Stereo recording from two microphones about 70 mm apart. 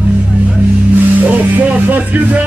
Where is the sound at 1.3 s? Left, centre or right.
Right.